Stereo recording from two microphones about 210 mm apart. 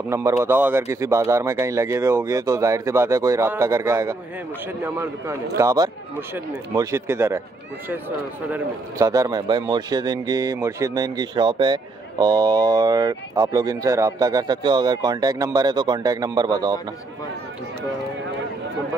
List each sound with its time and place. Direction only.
0.1 s speech: 15° right (ahead or behind)
8.5 s speech: 10° right (ahead or behind)